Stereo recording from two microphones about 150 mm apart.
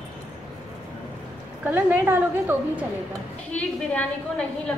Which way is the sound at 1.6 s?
15° right (ahead or behind).